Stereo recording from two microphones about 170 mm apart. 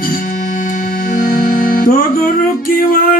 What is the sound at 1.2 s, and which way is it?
Music, 55° left (ahead or behind).